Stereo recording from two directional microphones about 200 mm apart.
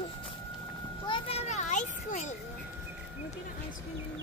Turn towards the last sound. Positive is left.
turn(degrees=35)  # may be behind; listen again after turning